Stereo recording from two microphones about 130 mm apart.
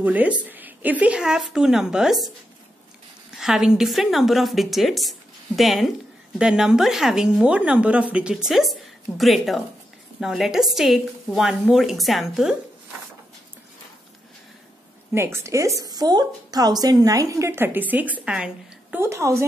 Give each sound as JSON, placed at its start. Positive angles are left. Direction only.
{"t": 0.0, "sound": "a woman's voice", "side_deg": -10}
{"t": 3.3, "sound": "a woman's voice", "side_deg": -5}
{"t": 15.1, "sound": "a woman's voice", "side_deg": -20}
{"t": 19.0, "sound": "a woman's voice", "side_deg": -20}